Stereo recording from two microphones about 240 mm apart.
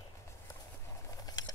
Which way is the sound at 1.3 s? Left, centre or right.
Centre.